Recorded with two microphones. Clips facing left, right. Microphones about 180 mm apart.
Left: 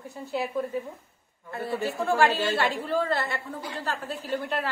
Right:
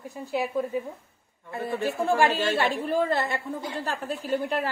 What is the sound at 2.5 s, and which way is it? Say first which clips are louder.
A woman's voice: right 2 dB; 15° right (ahead or behind).